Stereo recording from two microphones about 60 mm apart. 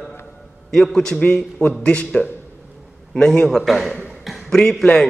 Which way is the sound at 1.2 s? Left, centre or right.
Centre.